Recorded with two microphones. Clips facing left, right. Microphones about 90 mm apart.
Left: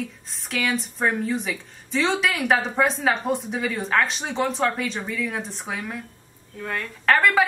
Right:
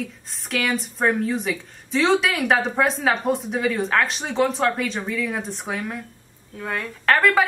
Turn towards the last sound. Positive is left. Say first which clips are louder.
# right 1 dB
turn(degrees=0)  # may be behind; listen again after turning